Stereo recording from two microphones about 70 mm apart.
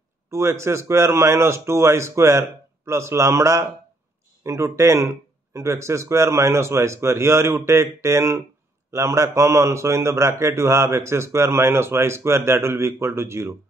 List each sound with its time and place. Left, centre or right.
0.3 s a man's voice: right